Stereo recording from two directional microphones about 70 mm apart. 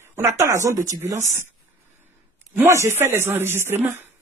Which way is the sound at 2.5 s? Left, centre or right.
Right.